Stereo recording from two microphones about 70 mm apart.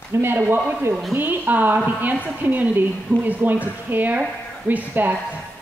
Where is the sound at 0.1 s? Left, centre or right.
Right.